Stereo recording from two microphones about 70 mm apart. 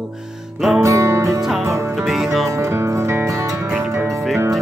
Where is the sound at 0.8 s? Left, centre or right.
Right.